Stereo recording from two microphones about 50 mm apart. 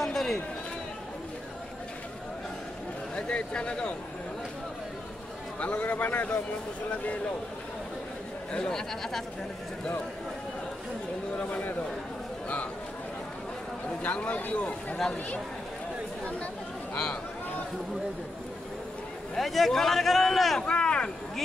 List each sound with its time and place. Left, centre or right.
0.0 s run: centre
3.2 s speech: left
5.6 s a man's voice: left
8.5 s speech: centre
11.3 s speech: left
14.1 s speech: left
16.9 s speech: centre
19.3 s speech: centre
20.6 s a sound: centre